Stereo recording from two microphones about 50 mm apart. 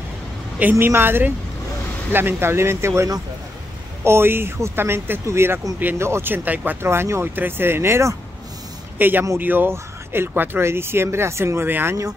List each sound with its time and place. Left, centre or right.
0.6 s a woman's voice: right
4.0 s a woman's voice: right
6.2 s speech: right
6.8 s speech: right
8.9 s speech: right
9.7 s speech: right
10.6 s a woman's voice: right